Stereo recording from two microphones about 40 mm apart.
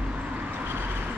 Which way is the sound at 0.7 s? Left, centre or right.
Right.